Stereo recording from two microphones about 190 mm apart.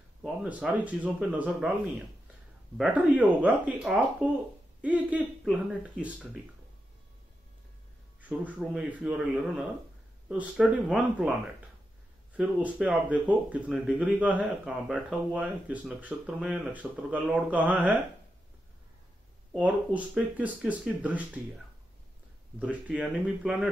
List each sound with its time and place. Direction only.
0.2 s speech: 5° right (ahead or behind)
2.8 s speech: 5° right (ahead or behind)
8.2 s speech: 5° right (ahead or behind)
12.4 s speech: 5° right (ahead or behind)
19.6 s speech: 5° right (ahead or behind)
22.6 s speech: 5° right (ahead or behind)